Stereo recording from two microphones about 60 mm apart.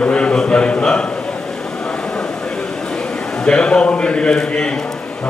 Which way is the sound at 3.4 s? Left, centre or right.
Centre.